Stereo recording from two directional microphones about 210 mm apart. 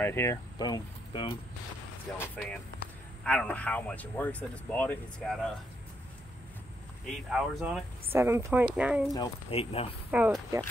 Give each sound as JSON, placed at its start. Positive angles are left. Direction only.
{"t": 0.0, "sound": "speech", "side_deg": 10}
{"t": 2.1, "sound": "speech", "side_deg": 5}
{"t": 7.2, "sound": "speech", "side_deg": 0}
{"t": 9.1, "sound": "speech", "side_deg": 20}
{"t": 10.1, "sound": "speech", "side_deg": -5}